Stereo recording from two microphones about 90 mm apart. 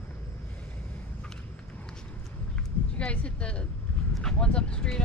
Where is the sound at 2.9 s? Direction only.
15° left (ahead or behind).